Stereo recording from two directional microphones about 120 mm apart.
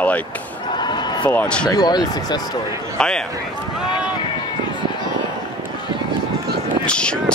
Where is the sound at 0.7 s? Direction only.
35° left (ahead or behind).